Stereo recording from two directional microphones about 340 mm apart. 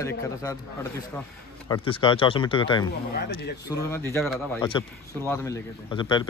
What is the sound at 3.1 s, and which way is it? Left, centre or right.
Speech, left.